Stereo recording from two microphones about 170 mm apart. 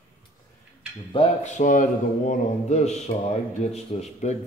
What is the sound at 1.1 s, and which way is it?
A man's voice, 40° left (ahead or behind).